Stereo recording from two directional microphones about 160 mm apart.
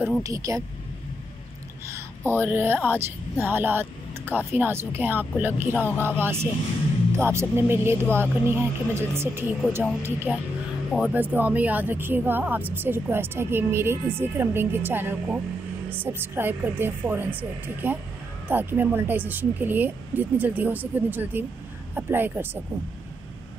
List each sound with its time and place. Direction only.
0.2 s speech: 20° right (ahead or behind)
1.9 s a woman's voice: 15° right (ahead or behind)
5.9 s speech: 10° left (ahead or behind)
6.2 s a woman's voice: 15° right (ahead or behind)
10.9 s a woman's voice: 10° right (ahead or behind)